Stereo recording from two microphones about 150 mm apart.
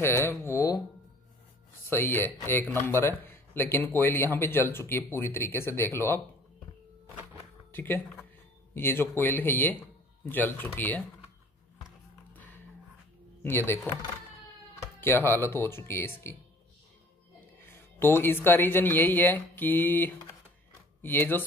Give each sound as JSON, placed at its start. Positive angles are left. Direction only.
{"t": 0.0, "sound": "a man's voice", "side_deg": 15}
{"t": 1.9, "sound": "a man's voice", "side_deg": 15}
{"t": 7.7, "sound": "a man's voice", "side_deg": 15}
{"t": 13.4, "sound": "speech", "side_deg": 15}
{"t": 14.8, "sound": "a man's voice", "side_deg": 15}
{"t": 17.6, "sound": "a man's voice", "side_deg": 15}